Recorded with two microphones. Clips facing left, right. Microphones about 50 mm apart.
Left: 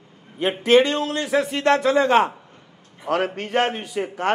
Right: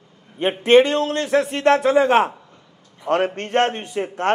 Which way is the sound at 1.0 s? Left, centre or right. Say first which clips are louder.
Right 3 dB; centre.